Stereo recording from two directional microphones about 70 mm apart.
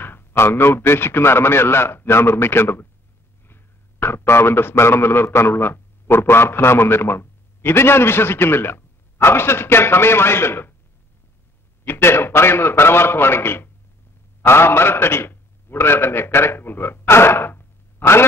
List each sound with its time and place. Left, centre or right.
0.0 s a man's voice: left
11.8 s a man's voice: left